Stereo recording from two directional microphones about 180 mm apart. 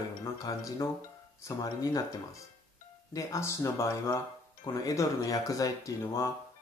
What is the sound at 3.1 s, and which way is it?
Speech, 20° left (ahead or behind).